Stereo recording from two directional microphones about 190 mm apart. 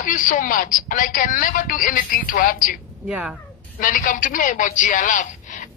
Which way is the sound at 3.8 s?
45° left (ahead or behind).